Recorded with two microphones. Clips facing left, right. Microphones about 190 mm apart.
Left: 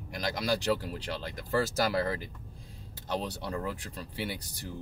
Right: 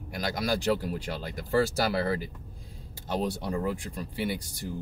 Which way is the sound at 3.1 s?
10° right (ahead or behind).